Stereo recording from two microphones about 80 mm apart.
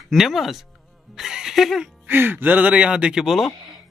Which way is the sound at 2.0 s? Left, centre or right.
Right.